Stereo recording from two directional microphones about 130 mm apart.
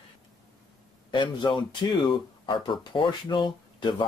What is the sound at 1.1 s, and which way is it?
Speech, 40° left (ahead or behind).